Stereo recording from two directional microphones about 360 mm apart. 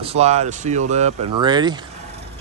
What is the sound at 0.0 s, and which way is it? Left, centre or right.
Speech, centre.